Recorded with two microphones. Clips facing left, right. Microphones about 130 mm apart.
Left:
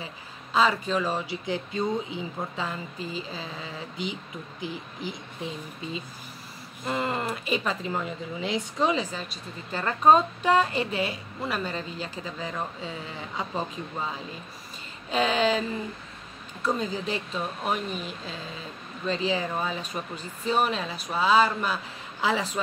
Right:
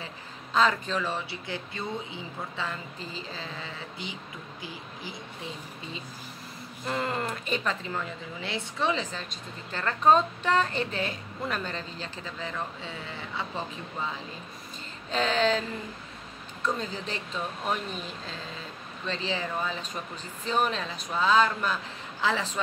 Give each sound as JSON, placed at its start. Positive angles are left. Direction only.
{"t": 0.0, "sound": "speech", "side_deg": 5}
{"t": 1.1, "sound": "speech", "side_deg": 15}
{"t": 6.9, "sound": "speech", "side_deg": 5}
{"t": 15.0, "sound": "speech", "side_deg": 10}
{"t": 16.6, "sound": "speech", "side_deg": 5}